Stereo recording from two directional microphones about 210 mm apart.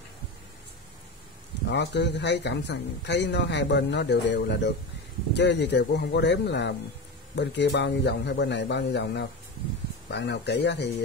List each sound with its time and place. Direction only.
1.7 s speech: 55° left (ahead or behind)